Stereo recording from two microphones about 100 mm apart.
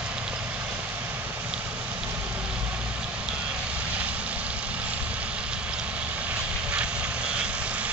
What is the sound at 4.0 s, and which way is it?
Vehicle, 15° right (ahead or behind).